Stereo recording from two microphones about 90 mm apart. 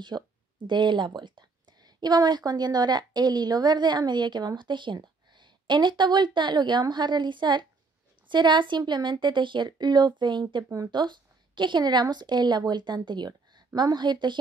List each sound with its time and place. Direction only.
0.1 s speech: 40° right (ahead or behind)
0.7 s a woman's voice: 60° right (ahead or behind)